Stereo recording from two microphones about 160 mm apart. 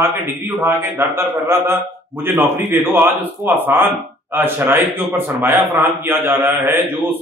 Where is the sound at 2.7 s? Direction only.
15° right (ahead or behind).